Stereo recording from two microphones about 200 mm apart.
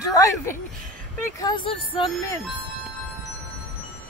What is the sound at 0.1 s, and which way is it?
Speech, 15° left (ahead or behind).